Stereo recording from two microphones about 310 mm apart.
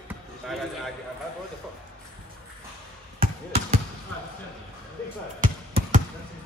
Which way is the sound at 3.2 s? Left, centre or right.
Right.